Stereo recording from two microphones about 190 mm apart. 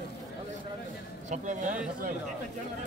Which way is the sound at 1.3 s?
40° right (ahead or behind).